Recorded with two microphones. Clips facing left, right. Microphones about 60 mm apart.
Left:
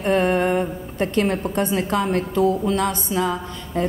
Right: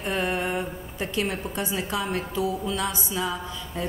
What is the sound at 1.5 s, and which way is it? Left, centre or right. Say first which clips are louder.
A woman's voice: left 7 dB; left.